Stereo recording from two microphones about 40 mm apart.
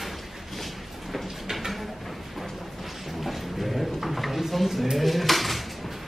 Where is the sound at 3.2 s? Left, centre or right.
Centre.